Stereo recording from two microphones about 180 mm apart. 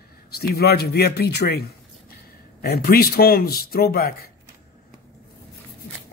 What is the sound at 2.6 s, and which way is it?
Speech, 60° left (ahead or behind).